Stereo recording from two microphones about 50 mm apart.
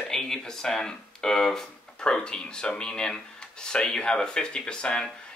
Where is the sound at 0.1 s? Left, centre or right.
Centre.